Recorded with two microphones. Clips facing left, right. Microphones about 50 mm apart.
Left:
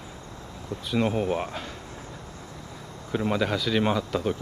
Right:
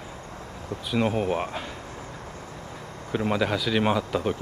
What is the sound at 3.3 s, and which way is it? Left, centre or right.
Speech, centre.